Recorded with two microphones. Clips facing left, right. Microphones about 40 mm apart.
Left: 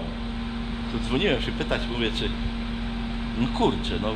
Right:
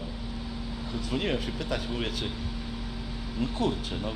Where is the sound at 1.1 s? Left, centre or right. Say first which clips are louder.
Left 6 dB; left.